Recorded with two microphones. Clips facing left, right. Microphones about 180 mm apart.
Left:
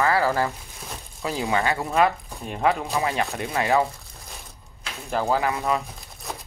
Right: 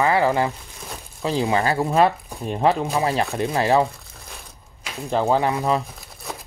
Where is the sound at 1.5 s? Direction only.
35° right (ahead or behind).